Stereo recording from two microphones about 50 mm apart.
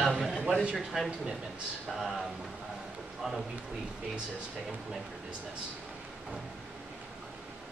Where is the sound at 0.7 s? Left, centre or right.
Centre.